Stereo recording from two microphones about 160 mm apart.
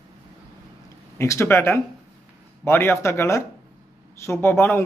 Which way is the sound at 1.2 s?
15° left (ahead or behind).